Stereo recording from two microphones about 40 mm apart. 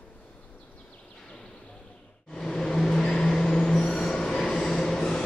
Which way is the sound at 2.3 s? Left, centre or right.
Centre.